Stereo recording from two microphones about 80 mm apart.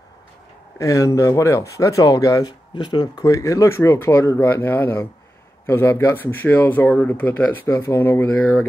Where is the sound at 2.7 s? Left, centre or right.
Left.